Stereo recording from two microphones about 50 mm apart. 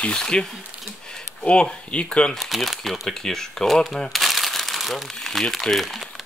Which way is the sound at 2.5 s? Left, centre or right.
Centre.